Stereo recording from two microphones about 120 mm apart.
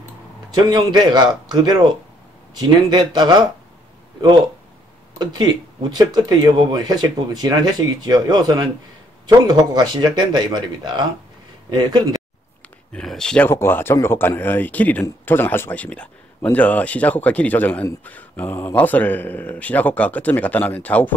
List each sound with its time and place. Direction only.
0.6 s speech: 35° right (ahead or behind)
12.9 s speech: 5° left (ahead or behind)
13.5 s speech: 20° left (ahead or behind)